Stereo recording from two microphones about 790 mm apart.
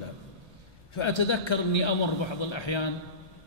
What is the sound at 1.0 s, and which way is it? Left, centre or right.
A man's voice, left.